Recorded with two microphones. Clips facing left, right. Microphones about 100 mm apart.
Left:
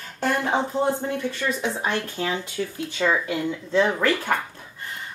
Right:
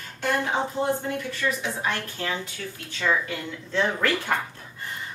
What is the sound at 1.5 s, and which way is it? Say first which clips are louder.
A woman's voice: even; 25° left (ahead or behind).